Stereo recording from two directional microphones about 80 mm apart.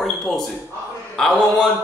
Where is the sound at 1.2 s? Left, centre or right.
Centre.